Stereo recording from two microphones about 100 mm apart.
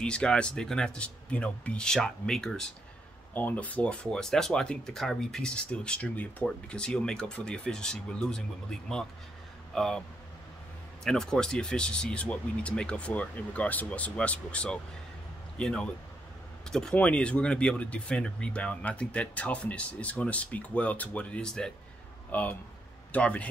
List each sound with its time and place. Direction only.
0.0 s speech: 10° left (ahead or behind)
3.3 s speech: 15° left (ahead or behind)
11.1 s speech: 5° left (ahead or behind)